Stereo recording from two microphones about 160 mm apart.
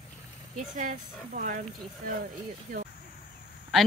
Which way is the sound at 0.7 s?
60° right (ahead or behind).